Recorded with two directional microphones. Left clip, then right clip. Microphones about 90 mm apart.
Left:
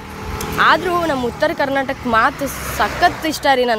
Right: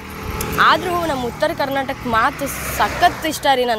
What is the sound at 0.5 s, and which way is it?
Speech, 75° left (ahead or behind).